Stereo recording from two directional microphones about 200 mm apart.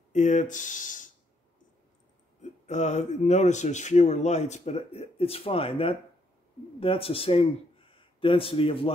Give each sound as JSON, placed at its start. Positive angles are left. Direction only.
{"t": 0.1, "sound": "speech", "side_deg": 35}
{"t": 2.6, "sound": "a man's voice", "side_deg": 35}